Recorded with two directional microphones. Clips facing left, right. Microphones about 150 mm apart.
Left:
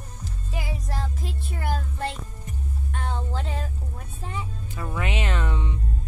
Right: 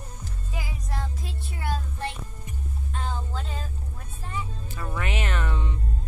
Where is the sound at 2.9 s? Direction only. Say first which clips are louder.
Left 2 dB; 70° left (ahead or behind).